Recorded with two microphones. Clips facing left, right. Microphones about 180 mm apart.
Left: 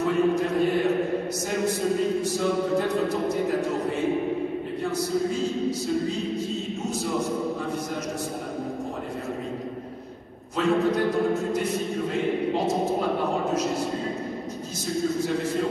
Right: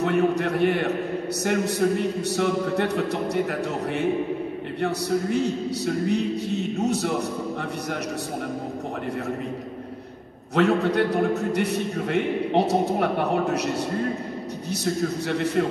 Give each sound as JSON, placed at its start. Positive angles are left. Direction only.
{"t": 0.0, "sound": "a man's voice", "side_deg": -70}
{"t": 5.3, "sound": "a man's voice", "side_deg": -70}
{"t": 10.5, "sound": "a man's voice", "side_deg": -70}
{"t": 15.2, "sound": "a man's voice", "side_deg": -70}